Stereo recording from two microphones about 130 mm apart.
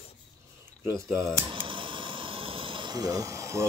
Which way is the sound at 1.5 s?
40° right (ahead or behind).